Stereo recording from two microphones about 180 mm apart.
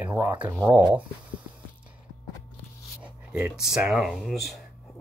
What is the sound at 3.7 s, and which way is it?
Speech, 5° right (ahead or behind).